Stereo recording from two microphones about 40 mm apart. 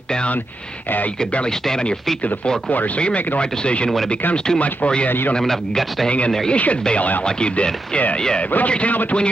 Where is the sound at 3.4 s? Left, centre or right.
Left.